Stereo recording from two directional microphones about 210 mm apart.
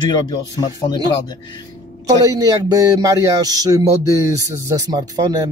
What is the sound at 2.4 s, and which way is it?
Speech, 15° right (ahead or behind).